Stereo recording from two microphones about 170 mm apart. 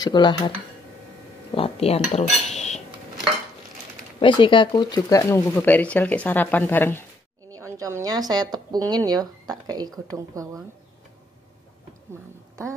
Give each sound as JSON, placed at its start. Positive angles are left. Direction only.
{"t": 0.0, "sound": "speech", "side_deg": 25}
{"t": 1.5, "sound": "cutlery", "side_deg": 35}
{"t": 4.2, "sound": "speech", "side_deg": 30}
{"t": 7.5, "sound": "speech", "side_deg": -20}